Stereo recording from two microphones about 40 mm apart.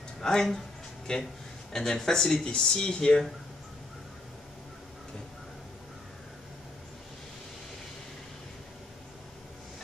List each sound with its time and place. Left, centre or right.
0.2 s speech: centre
1.7 s speech: centre